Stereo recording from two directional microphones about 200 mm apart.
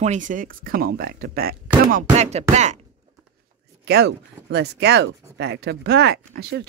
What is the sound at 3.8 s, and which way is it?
Speech, 55° right (ahead or behind).